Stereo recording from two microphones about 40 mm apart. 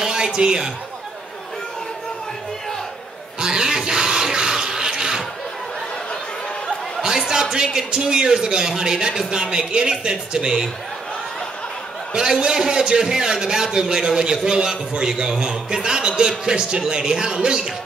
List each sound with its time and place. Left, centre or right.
0.0 s a man's voice: centre
3.3 s a sound: centre
7.0 s a man's voice: centre
12.1 s a man's voice: centre